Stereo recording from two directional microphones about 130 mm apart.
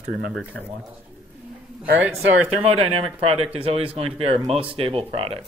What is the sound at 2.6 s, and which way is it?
Speech, 50° right (ahead or behind).